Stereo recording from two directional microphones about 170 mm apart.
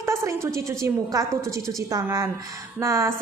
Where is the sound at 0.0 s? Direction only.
15° right (ahead or behind).